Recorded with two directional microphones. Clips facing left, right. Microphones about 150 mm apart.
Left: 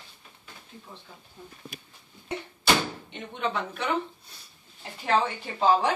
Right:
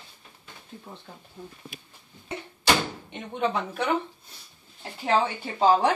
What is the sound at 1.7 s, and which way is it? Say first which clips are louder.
Speech: left 1 dB; 45° left (ahead or behind).